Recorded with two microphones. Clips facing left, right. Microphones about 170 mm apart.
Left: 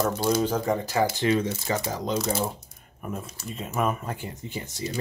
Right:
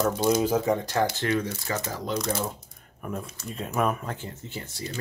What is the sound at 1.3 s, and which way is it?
Speech, 25° left (ahead or behind).